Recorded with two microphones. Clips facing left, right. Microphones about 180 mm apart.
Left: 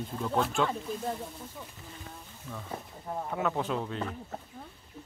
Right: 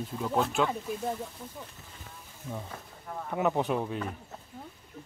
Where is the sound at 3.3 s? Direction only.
20° right (ahead or behind).